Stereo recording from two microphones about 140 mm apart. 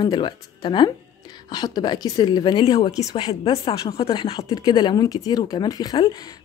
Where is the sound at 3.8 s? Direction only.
40° left (ahead or behind).